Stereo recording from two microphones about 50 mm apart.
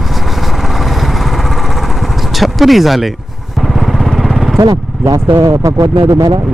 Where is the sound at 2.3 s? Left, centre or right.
Centre.